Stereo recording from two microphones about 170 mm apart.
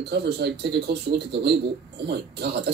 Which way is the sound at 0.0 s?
75° right (ahead or behind).